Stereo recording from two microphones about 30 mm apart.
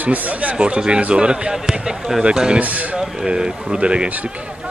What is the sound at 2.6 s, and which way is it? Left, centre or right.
Speech, right.